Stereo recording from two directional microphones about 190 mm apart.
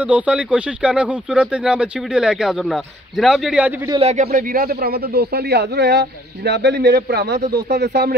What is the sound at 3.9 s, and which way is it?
Speech, 35° right (ahead or behind).